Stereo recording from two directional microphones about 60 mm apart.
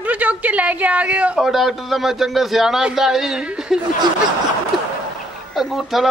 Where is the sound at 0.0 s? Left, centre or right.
Right.